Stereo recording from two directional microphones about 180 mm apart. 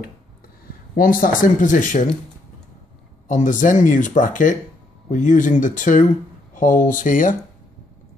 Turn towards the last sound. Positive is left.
turn(degrees=50)  # may be behind; listen again after turning